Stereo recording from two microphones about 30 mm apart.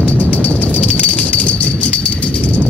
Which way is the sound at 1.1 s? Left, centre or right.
Left.